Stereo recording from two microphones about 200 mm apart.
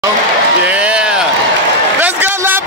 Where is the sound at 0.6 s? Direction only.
5° right (ahead or behind).